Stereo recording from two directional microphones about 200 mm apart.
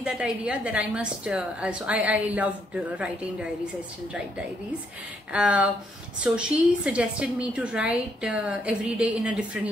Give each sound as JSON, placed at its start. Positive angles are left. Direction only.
{"t": 0.0, "sound": "a woman's voice", "side_deg": -5}
{"t": 5.3, "sound": "a woman's voice", "side_deg": -5}